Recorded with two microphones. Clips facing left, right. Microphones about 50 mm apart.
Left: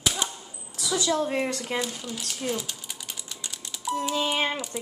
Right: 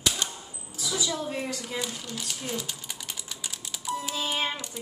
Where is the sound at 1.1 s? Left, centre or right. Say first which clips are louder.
Left 6 dB; left.